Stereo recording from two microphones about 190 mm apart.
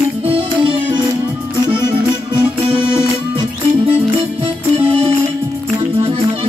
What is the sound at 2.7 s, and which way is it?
Music, 30° right (ahead or behind).